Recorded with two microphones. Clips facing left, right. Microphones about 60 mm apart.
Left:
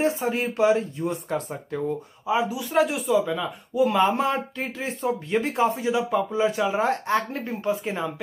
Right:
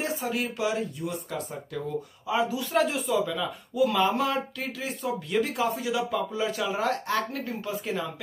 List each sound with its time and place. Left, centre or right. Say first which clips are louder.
0.0 s speech: left 6 dB; left
1.7 s speech: left 6 dB; left
2.5 s speech: left 3 dB; centre
3.3 s speech: left 3 dB; left